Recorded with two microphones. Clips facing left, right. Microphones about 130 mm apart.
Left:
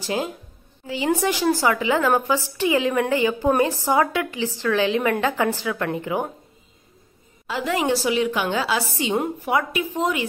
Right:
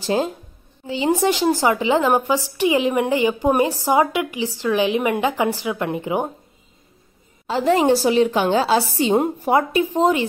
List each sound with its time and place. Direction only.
0.0 s a woman's voice: 30° right (ahead or behind)
7.4 s a woman's voice: 30° right (ahead or behind)